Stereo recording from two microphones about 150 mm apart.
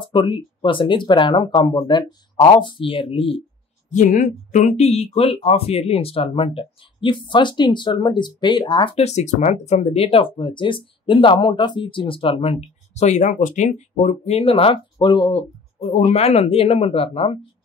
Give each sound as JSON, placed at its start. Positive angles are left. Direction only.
{"t": 0.0, "sound": "speech", "side_deg": 35}
{"t": 3.9, "sound": "speech", "side_deg": 55}
{"t": 15.3, "sound": "speech", "side_deg": 45}